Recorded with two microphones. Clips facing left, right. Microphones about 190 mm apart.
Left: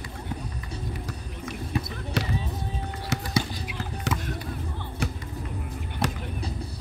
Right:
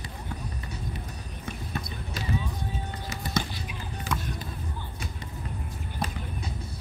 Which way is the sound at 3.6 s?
75° left (ahead or behind).